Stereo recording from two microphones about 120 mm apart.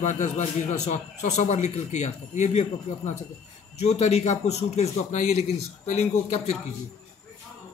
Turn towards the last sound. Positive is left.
turn(degrees=70)  # may be behind; listen again after turning